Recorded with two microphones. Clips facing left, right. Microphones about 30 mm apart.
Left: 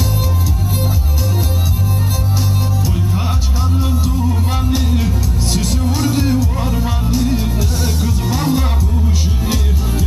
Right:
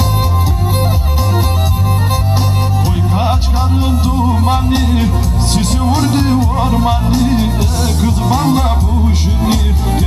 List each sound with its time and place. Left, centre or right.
3.9 s music: right